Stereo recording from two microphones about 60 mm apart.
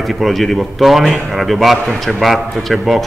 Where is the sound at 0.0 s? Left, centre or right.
Centre.